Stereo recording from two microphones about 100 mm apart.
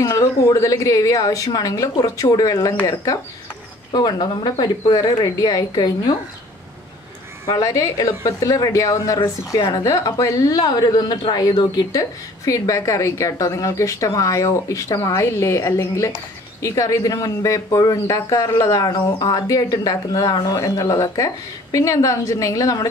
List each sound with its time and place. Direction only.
0.0 s a woman's voice: 30° left (ahead or behind)
3.9 s speech: 45° left (ahead or behind)
7.4 s a woman's voice: 40° left (ahead or behind)